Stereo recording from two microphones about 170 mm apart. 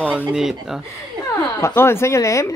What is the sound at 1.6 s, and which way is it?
Speech, 15° left (ahead or behind).